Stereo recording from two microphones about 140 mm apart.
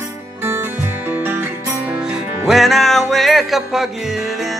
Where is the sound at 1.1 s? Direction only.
15° right (ahead or behind).